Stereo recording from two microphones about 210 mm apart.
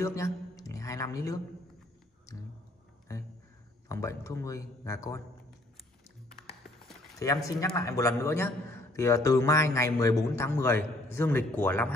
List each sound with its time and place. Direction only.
0.0 s a man's voice: 15° left (ahead or behind)
7.2 s a man's voice: 15° left (ahead or behind)